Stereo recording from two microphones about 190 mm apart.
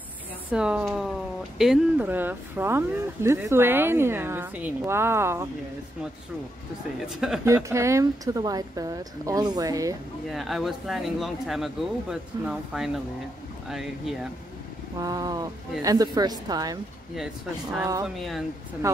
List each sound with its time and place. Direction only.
0.5 s speech: 5° right (ahead or behind)
7.4 s speech: 15° right (ahead or behind)
10.3 s speech: centre (ahead or behind)
15.0 s speech: 20° right (ahead or behind)
17.7 s speech: 15° right (ahead or behind)
18.0 s speech: centre (ahead or behind)